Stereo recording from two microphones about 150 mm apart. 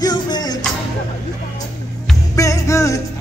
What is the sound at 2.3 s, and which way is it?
Music, 20° left (ahead or behind).